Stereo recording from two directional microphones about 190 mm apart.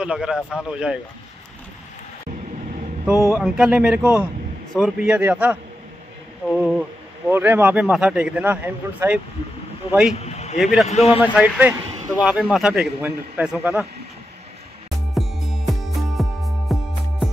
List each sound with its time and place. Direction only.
0.0 s a man's voice: 5° right (ahead or behind)
3.3 s a man's voice: 5° right (ahead or behind)
10.1 s a sound: 35° left (ahead or behind)
10.6 s a man's voice: centre (ahead or behind)
10.9 s a man's voice: 30° left (ahead or behind)
11.3 s a man's voice: 5° right (ahead or behind)
15.1 s music: centre (ahead or behind)